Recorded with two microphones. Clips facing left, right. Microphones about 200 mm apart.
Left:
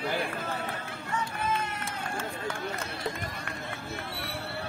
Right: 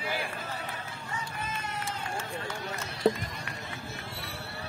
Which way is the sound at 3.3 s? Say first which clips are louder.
Left 2 dB; 55° left (ahead or behind).